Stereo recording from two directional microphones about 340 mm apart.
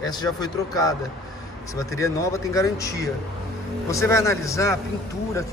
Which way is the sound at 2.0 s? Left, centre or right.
Centre.